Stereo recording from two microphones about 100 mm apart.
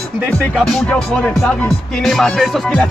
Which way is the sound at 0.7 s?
5° left (ahead or behind).